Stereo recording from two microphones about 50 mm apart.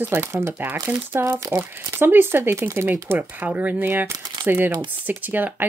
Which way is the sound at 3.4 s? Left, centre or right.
Right.